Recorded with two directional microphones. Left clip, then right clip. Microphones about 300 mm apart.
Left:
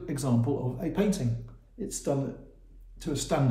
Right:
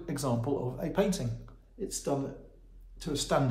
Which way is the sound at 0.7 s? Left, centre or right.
Centre.